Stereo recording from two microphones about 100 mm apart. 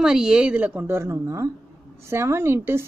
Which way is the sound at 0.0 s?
5° right (ahead or behind).